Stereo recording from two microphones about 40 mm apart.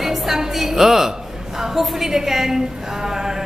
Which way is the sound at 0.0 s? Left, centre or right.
Centre.